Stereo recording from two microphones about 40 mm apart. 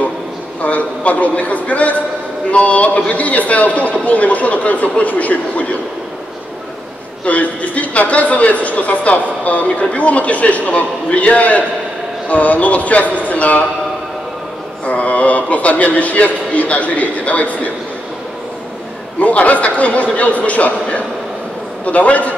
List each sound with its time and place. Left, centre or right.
0.6 s speech: left
7.2 s speech: left
14.9 s speech: left
19.1 s speech: left